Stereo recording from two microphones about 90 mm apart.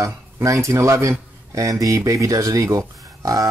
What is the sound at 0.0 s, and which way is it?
Speech, 35° right (ahead or behind).